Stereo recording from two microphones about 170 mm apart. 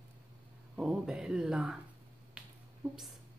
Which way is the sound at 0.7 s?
5° right (ahead or behind).